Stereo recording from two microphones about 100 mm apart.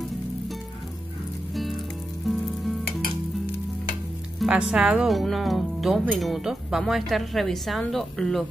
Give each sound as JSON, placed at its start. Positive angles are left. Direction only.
{"t": 1.5, "sound": "music", "side_deg": 0}
{"t": 2.2, "sound": "sizzle", "side_deg": 0}
{"t": 4.4, "sound": "speech", "side_deg": -5}